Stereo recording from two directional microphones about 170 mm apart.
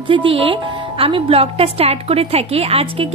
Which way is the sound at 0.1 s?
30° right (ahead or behind).